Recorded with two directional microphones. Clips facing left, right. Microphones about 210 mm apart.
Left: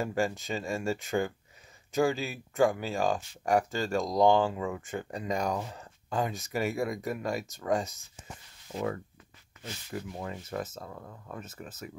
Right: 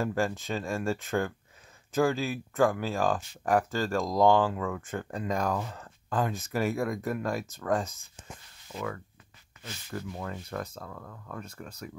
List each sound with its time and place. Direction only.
0.0 s speech: centre (ahead or behind)
5.5 s speech: 15° left (ahead or behind)
5.8 s speech: centre (ahead or behind)
8.7 s speech: 30° left (ahead or behind)
9.9 s speech: 10° left (ahead or behind)
10.8 s speech: 20° left (ahead or behind)
11.3 s speech: 5° left (ahead or behind)